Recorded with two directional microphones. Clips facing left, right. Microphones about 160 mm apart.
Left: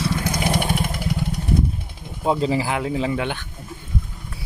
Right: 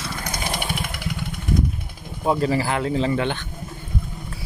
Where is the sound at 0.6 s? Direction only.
40° left (ahead or behind).